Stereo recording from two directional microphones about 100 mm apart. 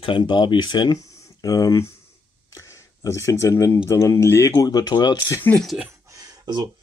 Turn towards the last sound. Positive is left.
turn(degrees=-40)  # may be behind; listen again after turning